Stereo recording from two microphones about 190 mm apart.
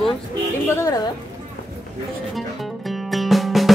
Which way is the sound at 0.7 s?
15° left (ahead or behind).